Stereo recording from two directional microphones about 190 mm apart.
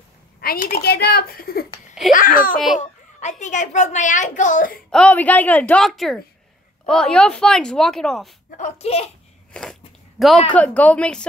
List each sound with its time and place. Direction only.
0.4 s a woman's voice: 50° left (ahead or behind)
4.9 s a woman's voice: 5° left (ahead or behind)
8.5 s a woman's voice: 35° left (ahead or behind)
9.5 s speech: 5° left (ahead or behind)